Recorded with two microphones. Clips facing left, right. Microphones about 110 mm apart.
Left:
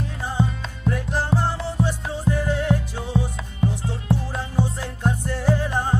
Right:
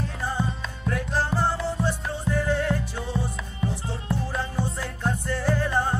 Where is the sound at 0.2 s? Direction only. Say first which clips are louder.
Left 4 dB; 15° left (ahead or behind).